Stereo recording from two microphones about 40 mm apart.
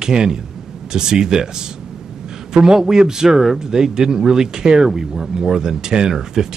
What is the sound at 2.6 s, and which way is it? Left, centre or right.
Speech, centre.